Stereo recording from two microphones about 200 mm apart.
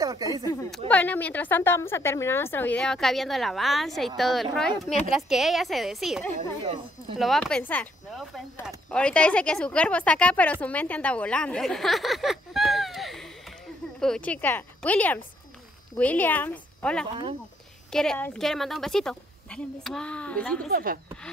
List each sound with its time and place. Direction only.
0.0 s speech: 15° right (ahead or behind)
0.7 s a woman's voice: 5° left (ahead or behind)
6.6 s speech: 25° right (ahead or behind)
7.2 s a woman's voice: centre (ahead or behind)
20.7 s speech: 45° right (ahead or behind)